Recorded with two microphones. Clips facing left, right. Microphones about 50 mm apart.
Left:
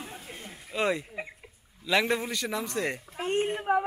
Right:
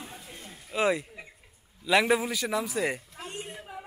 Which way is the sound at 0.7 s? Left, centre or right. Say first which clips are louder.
Right 2 dB; centre.